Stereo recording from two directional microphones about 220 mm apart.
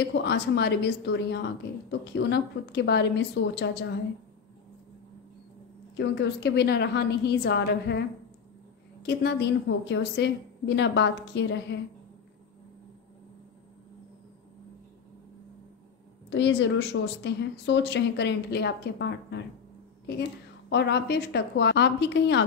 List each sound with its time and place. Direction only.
0.1 s a woman's voice: 50° left (ahead or behind)
5.9 s a woman's voice: 50° left (ahead or behind)
9.0 s a woman's voice: 50° left (ahead or behind)
16.3 s a woman's voice: 55° left (ahead or behind)
20.7 s a woman's voice: 50° left (ahead or behind)